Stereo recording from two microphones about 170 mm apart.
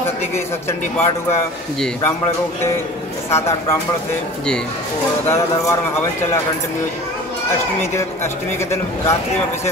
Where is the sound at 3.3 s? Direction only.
15° left (ahead or behind).